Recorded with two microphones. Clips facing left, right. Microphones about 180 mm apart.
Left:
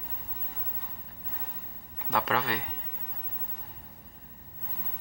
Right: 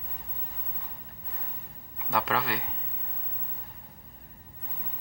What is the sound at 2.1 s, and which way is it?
Speech, centre (ahead or behind).